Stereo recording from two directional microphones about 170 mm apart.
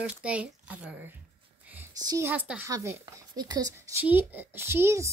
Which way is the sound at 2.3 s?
10° right (ahead or behind).